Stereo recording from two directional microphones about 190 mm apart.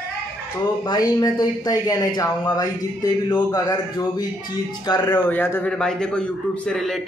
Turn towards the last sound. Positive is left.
turn(degrees=0)  # may be behind; listen again after turning